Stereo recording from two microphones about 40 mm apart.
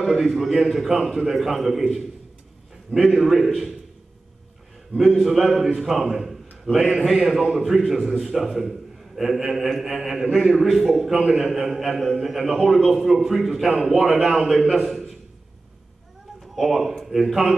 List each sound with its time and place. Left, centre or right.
0.2 s a man's voice: centre
4.9 s a man's voice: centre
7.7 s a man's voice: centre
16.5 s a man's voice: centre